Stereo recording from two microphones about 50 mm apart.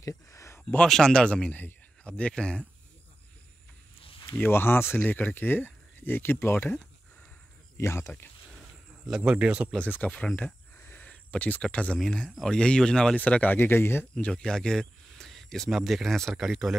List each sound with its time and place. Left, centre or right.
0.0 s a sound: left
0.8 s speech: centre
4.4 s speech: left
4.9 s speech: left
7.7 s a man's voice: left
9.1 s speech: centre
9.8 s speech: left
11.0 s a sound: left
11.7 s speech: left
13.1 s speech: left
13.6 s speech: left
14.1 s speech: centre